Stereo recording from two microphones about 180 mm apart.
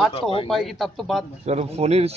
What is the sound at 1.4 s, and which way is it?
Speech, 35° right (ahead or behind).